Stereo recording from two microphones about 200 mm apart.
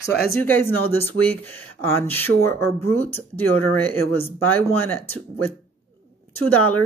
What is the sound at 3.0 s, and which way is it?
Speech, 10° left (ahead or behind).